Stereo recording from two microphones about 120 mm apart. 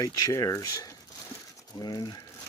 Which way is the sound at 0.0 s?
30° left (ahead or behind).